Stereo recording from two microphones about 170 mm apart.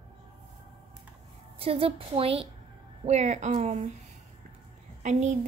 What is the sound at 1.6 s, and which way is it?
Speech, 35° right (ahead or behind).